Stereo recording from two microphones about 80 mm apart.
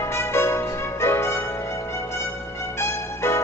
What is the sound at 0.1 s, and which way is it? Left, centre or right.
Music, left.